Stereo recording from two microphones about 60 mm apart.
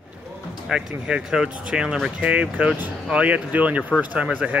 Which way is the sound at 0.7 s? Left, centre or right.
Centre.